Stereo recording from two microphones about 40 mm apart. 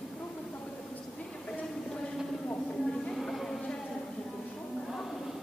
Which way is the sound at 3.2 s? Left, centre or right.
Centre.